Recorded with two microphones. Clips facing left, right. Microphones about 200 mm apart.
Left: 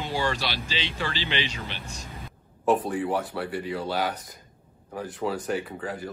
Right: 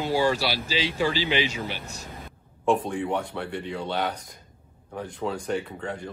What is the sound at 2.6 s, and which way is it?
Speech, 5° left (ahead or behind).